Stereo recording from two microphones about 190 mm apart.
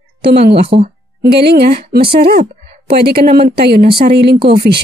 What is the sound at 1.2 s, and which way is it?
A woman's voice, 60° right (ahead or behind).